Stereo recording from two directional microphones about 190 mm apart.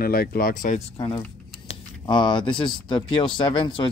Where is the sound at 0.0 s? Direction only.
50° left (ahead or behind).